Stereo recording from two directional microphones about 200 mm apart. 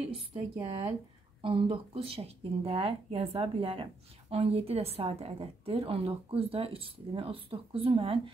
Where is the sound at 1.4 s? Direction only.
25° right (ahead or behind).